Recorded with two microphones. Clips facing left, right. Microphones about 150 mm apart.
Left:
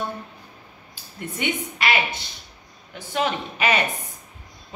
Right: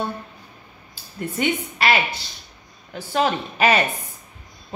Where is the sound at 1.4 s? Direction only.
40° right (ahead or behind).